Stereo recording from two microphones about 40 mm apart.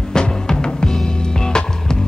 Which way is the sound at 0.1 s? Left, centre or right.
Centre.